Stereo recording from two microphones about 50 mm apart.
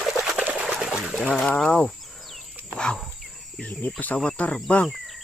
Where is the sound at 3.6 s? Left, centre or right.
Left.